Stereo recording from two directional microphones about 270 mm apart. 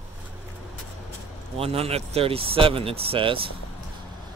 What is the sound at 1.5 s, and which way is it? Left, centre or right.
Speech, right.